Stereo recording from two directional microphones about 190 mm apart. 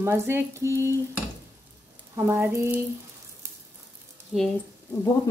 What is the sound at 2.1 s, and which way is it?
Frying, 10° right (ahead or behind).